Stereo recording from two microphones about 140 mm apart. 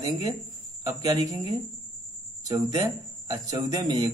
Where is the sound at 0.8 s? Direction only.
25° right (ahead or behind).